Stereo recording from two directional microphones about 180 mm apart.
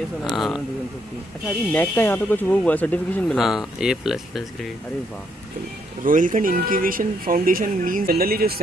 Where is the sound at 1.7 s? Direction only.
10° left (ahead or behind).